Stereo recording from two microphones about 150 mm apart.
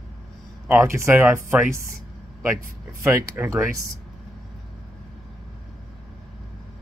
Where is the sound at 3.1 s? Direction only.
20° right (ahead or behind).